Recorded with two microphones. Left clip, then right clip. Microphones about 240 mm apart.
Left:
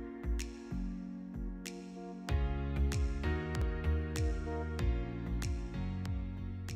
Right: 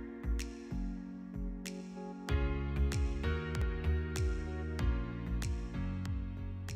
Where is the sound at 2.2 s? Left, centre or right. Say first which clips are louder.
Right 3 dB; centre.